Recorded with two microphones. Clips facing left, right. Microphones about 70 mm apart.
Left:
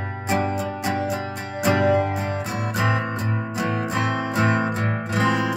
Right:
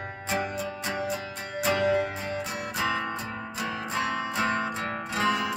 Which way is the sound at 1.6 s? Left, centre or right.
Left.